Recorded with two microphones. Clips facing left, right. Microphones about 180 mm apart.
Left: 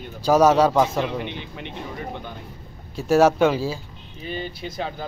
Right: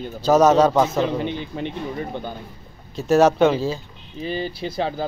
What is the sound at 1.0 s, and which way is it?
A man's voice, 35° right (ahead or behind).